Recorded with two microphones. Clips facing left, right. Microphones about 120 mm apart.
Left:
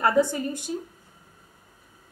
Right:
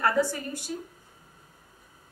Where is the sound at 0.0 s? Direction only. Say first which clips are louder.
Left 4 dB; 20° left (ahead or behind).